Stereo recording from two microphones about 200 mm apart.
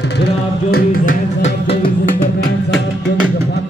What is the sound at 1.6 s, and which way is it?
Music, 30° left (ahead or behind).